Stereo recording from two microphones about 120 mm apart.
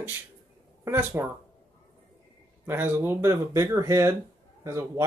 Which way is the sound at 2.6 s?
20° right (ahead or behind).